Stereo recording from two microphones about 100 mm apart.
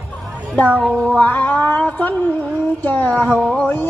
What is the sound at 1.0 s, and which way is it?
Music, 15° left (ahead or behind).